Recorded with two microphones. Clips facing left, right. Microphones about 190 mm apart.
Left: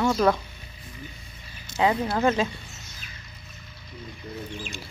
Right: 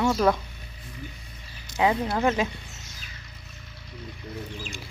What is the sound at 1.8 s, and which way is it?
Speech, 15° right (ahead or behind).